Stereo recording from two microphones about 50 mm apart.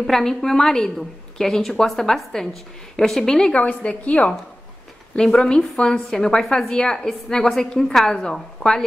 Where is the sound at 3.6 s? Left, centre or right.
Left.